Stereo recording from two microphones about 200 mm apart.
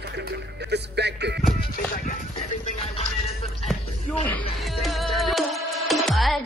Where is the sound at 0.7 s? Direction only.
55° right (ahead or behind).